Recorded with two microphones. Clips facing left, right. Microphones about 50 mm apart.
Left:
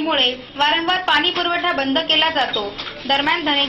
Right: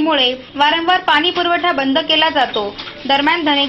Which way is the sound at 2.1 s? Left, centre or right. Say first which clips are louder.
Right 4 dB; right.